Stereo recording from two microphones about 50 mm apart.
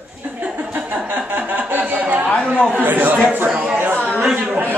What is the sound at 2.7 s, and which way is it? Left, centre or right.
Speech, right.